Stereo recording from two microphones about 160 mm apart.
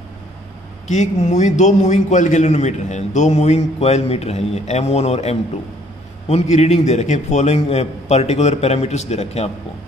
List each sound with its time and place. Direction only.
0.8 s a man's voice: 45° left (ahead or behind)